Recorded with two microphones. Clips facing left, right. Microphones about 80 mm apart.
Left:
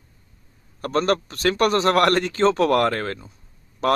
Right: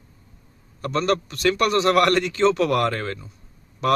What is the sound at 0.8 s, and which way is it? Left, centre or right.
A man's voice, left.